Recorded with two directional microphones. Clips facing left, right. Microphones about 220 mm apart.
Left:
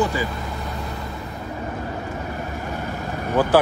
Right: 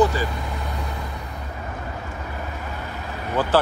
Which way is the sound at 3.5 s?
15° left (ahead or behind).